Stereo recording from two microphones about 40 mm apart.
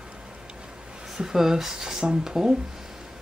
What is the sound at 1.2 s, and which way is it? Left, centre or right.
Speech, centre.